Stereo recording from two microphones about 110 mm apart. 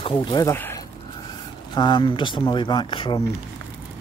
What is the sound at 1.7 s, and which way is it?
Speech, 45° left (ahead or behind).